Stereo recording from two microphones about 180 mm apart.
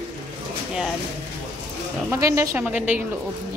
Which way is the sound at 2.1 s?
15° right (ahead or behind).